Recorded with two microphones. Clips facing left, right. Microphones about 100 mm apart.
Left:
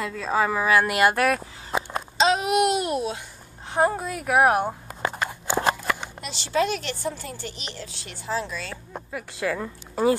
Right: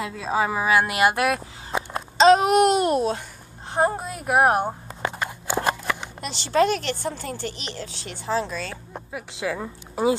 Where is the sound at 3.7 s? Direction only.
20° right (ahead or behind).